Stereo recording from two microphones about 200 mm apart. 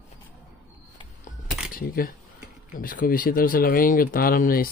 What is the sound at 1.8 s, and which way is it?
Speech, 45° left (ahead or behind).